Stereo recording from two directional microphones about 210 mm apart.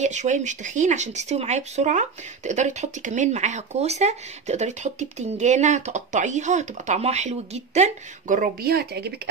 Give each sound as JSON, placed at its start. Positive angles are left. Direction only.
{"t": 0.0, "sound": "speech", "side_deg": -35}